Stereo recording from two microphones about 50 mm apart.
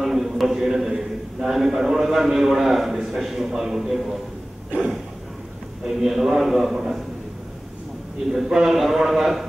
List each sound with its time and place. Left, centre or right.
0.0 s a man's voice: centre
5.9 s a man's voice: centre
8.3 s a man's voice: centre